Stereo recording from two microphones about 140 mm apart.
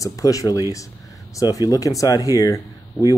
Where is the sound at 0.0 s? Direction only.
25° left (ahead or behind).